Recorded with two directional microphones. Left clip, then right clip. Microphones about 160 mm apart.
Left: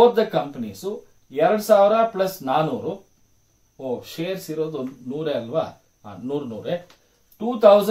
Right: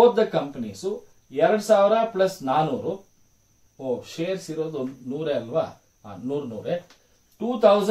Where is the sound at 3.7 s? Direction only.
25° left (ahead or behind).